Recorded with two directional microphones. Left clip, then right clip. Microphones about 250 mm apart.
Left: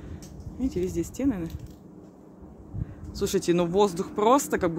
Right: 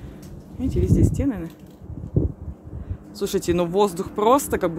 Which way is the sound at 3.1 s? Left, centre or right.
Centre.